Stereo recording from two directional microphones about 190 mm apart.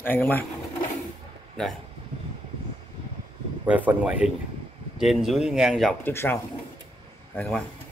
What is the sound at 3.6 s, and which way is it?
A man's voice, 5° right (ahead or behind).